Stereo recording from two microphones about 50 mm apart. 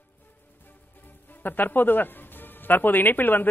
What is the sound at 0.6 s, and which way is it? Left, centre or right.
Speech, left.